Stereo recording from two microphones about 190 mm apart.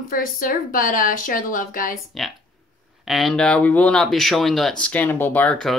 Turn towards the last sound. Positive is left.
turn(degrees=5)  # may be behind; listen again after turning